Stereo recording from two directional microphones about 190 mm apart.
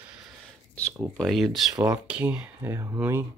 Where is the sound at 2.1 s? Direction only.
5° right (ahead or behind).